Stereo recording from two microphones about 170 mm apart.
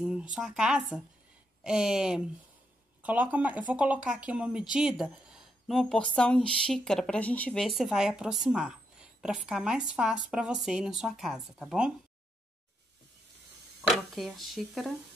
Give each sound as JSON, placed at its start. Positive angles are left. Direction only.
{"t": 0.0, "sound": "speech", "side_deg": -5}
{"t": 13.8, "sound": "speech", "side_deg": 0}